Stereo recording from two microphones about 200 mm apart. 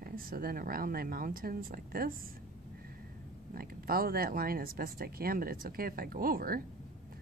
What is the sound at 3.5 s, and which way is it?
Speech, 45° right (ahead or behind).